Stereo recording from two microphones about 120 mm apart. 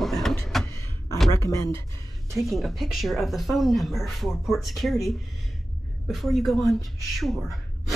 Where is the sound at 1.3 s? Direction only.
25° left (ahead or behind).